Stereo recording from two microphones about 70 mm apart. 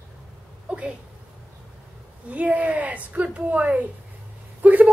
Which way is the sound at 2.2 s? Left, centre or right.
Centre.